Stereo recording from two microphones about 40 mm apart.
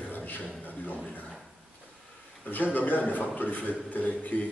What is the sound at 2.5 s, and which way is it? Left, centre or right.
A man's voice, left.